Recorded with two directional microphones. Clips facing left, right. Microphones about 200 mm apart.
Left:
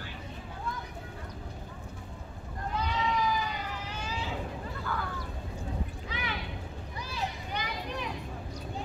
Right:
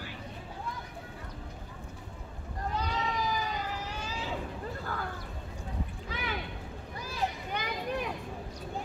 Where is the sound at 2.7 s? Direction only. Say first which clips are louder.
Left 3 dB; 40° right (ahead or behind).